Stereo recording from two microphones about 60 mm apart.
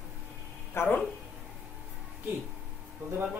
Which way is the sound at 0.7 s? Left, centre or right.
Left.